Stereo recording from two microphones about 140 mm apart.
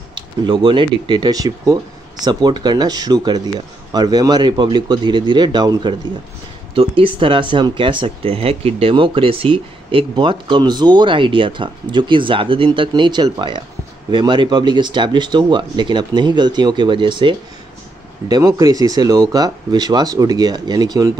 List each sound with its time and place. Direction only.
0.1 s speech: 35° right (ahead or behind)